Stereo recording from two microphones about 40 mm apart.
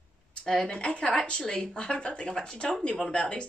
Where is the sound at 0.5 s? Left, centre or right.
Centre.